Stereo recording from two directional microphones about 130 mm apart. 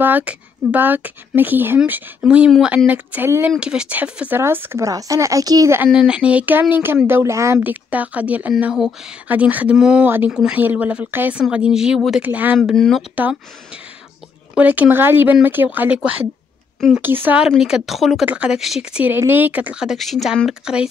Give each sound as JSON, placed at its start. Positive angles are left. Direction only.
{"t": 0.0, "sound": "speech", "side_deg": -10}
{"t": 5.9, "sound": "speech", "side_deg": -5}
{"t": 12.5, "sound": "speech", "side_deg": 5}
{"t": 13.1, "sound": "speech", "side_deg": -10}
{"t": 14.5, "sound": "speech", "side_deg": -10}